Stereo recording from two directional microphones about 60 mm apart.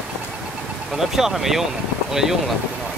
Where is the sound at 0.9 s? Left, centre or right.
Centre.